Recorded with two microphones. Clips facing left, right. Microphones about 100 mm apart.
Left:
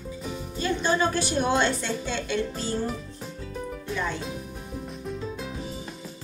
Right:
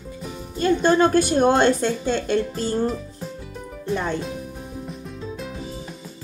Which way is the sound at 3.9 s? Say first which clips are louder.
Right 6 dB; 45° right (ahead or behind).